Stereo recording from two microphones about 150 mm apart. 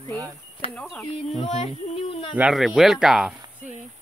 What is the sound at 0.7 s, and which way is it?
Speech, 5° left (ahead or behind).